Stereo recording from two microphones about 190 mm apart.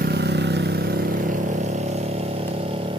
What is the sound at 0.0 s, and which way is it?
Vehicle, 60° right (ahead or behind).